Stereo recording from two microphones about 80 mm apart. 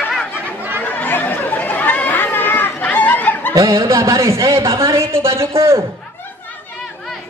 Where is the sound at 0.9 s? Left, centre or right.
Left.